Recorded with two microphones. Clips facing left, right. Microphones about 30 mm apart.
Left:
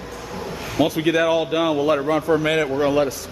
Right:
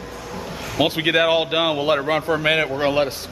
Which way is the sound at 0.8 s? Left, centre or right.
Right.